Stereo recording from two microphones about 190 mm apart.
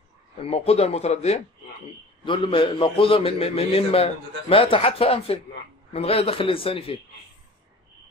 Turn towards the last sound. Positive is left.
turn(degrees=30)  # may be behind; listen again after turning